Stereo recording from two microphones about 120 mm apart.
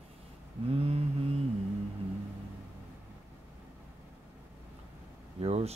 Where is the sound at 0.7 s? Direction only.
55° right (ahead or behind).